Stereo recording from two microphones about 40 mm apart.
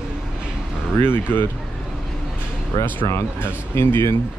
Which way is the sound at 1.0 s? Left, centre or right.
Left.